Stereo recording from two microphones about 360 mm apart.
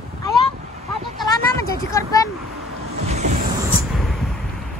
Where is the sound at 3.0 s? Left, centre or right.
Centre.